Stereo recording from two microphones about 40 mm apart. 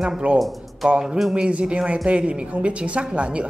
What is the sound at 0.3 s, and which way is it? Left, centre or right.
Speech, right.